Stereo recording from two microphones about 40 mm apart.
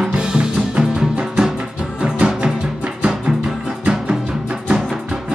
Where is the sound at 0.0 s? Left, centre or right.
Centre.